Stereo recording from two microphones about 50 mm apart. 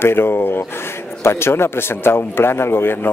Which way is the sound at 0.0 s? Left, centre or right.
Left.